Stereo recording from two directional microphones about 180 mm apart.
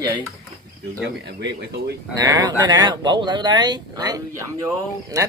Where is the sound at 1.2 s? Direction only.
70° right (ahead or behind).